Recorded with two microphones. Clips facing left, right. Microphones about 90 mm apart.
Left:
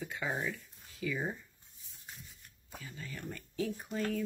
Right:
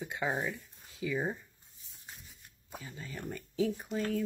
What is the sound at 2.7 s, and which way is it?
Speech, 25° right (ahead or behind).